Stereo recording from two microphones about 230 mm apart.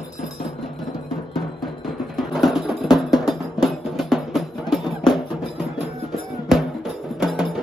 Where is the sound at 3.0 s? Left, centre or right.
Centre.